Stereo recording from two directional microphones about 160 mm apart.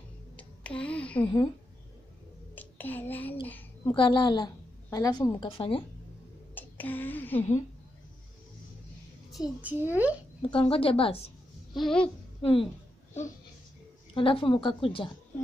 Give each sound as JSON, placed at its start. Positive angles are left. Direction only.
{"t": 0.4, "sound": "a sound", "side_deg": 10}
{"t": 2.5, "sound": "a child's voice", "side_deg": 10}
{"t": 3.8, "sound": "a woman's voice", "side_deg": 30}
{"t": 5.5, "sound": "a woman's voice", "side_deg": 35}
{"t": 6.5, "sound": "speech", "side_deg": 10}
{"t": 9.3, "sound": "a child's voice", "side_deg": -5}
{"t": 10.4, "sound": "a woman's voice", "side_deg": 35}
{"t": 11.7, "sound": "babbling", "side_deg": 5}
{"t": 12.4, "sound": "speech", "side_deg": 35}
{"t": 14.1, "sound": "a woman's voice", "side_deg": 35}